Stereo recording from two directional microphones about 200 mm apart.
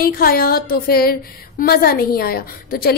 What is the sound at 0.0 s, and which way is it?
A woman's voice, 50° left (ahead or behind).